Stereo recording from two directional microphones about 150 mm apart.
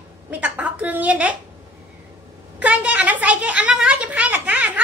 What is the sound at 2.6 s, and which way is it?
A child's voice, 10° right (ahead or behind).